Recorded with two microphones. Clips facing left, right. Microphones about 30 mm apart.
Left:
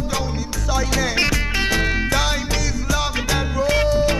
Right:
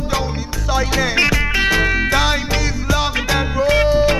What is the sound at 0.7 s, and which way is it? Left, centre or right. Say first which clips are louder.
Music: right 4 dB; centre.